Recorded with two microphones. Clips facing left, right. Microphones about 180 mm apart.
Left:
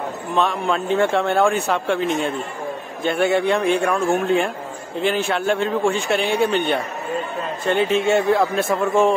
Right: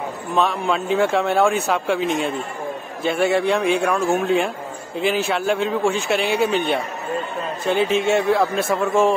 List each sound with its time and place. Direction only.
0.4 s speech: centre (ahead or behind)